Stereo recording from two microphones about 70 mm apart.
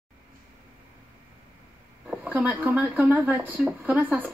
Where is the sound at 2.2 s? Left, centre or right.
Right.